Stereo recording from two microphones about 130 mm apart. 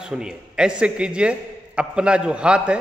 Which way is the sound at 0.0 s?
5° right (ahead or behind).